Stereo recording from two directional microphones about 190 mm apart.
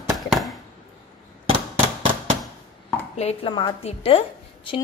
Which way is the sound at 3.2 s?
30° left (ahead or behind).